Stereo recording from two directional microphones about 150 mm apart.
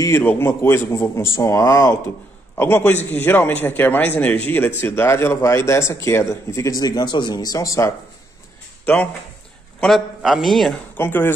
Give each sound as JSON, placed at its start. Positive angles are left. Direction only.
{"t": 0.0, "sound": "a man's voice", "side_deg": 15}
{"t": 8.8, "sound": "a man's voice", "side_deg": 10}
{"t": 11.0, "sound": "speech", "side_deg": 15}